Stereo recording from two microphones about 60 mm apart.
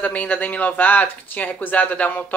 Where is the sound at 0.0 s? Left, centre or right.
Left.